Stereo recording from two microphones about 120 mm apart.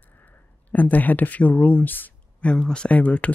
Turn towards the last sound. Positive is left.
turn(degrees=10)  # may be behind; listen again after turning